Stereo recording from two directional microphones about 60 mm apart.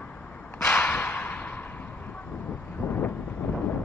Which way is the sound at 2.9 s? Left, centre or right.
Left.